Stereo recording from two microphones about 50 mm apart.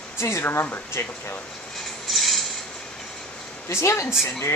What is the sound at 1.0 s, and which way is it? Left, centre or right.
Speech, left.